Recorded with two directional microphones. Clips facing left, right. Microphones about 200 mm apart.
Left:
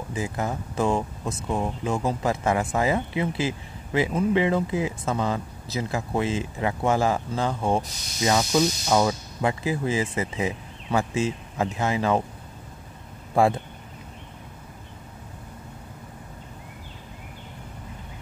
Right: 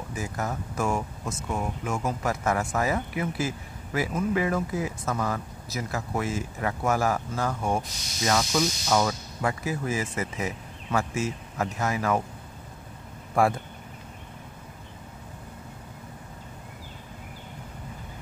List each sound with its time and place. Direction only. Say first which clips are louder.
0.1 s speech: left 3 dB; 25° left (ahead or behind)
13.3 s speech: left 3 dB; 25° left (ahead or behind)